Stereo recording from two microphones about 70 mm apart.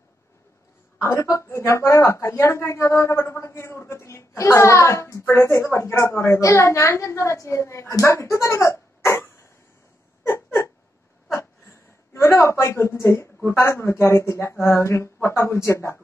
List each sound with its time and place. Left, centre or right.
0.9 s speech: left
8.0 s a sound: left
12.1 s a woman's voice: left